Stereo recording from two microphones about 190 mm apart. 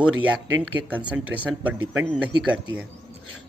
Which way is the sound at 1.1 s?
5° right (ahead or behind).